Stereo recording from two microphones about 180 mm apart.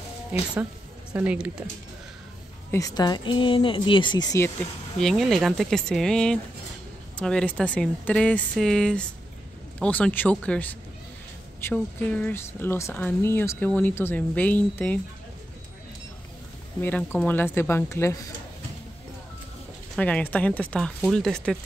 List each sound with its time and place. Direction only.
1.1 s speech: 10° right (ahead or behind)
2.7 s speech: 20° left (ahead or behind)
4.9 s speech: centre (ahead or behind)
16.8 s speech: 10° left (ahead or behind)
20.0 s speech: 10° left (ahead or behind)